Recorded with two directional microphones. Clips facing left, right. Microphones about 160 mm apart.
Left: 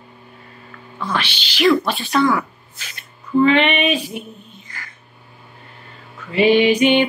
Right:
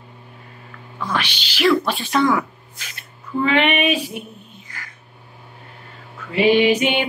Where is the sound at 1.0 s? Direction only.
10° right (ahead or behind).